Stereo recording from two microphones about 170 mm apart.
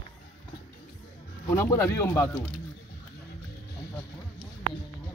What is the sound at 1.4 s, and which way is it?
Speech, 15° left (ahead or behind).